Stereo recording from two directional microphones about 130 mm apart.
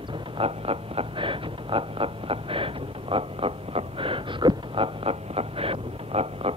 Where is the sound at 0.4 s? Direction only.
45° right (ahead or behind).